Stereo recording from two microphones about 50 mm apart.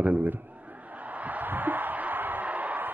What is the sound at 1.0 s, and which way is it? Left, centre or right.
Music, right.